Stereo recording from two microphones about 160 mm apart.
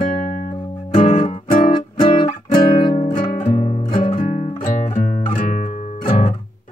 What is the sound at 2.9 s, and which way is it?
Music, 45° left (ahead or behind).